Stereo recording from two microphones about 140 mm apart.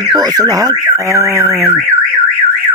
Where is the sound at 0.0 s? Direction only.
30° right (ahead or behind).